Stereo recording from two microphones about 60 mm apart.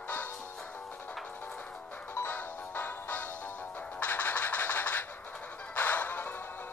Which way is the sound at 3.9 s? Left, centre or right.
Left.